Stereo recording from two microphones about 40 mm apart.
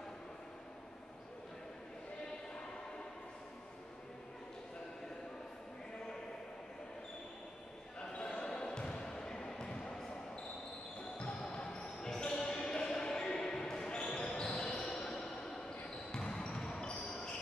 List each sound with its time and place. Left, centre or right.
8.0 s basketball bounce: centre
11.4 s basketball bounce: centre
17.1 s train wheels squealing: centre